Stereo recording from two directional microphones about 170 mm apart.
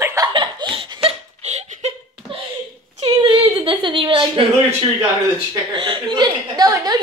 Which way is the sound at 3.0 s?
25° right (ahead or behind).